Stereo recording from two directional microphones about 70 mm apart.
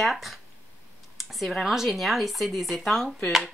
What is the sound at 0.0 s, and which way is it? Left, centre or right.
Speech, centre.